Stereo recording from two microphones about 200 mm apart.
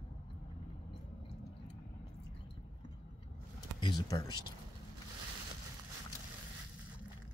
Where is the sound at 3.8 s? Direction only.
20° left (ahead or behind).